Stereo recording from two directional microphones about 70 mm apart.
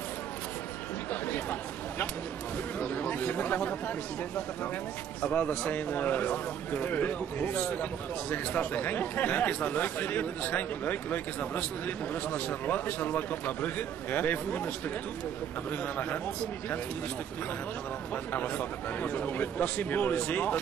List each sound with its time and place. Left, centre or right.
1.2 s a man's voice: left
5.2 s a man's voice: centre
18.1 s a man's voice: left